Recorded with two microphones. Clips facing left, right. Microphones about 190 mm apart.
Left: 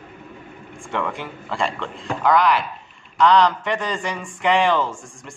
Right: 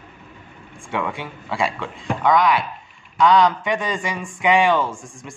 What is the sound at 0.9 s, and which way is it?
A man's voice, centre (ahead or behind).